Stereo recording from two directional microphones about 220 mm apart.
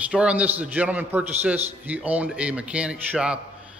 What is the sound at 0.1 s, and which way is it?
A man's voice, 5° right (ahead or behind).